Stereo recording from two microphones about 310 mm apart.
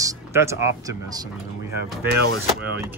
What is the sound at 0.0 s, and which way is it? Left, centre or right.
Speech, centre.